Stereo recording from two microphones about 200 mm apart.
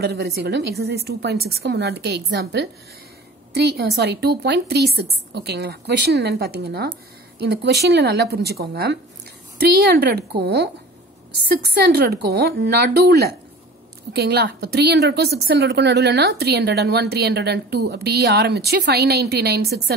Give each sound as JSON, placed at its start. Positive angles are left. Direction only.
{"t": 0.0, "sound": "a woman's voice", "side_deg": -55}